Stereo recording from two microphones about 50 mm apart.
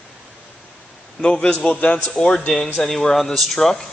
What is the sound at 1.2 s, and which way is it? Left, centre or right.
A man's voice, centre.